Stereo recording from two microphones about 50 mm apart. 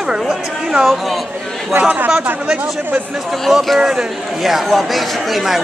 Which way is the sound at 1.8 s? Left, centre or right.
Right.